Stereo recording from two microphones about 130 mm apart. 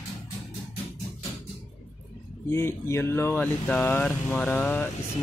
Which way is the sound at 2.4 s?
20° left (ahead or behind).